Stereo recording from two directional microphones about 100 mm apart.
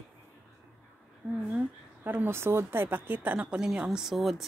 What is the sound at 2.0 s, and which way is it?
A woman's voice, 20° right (ahead or behind).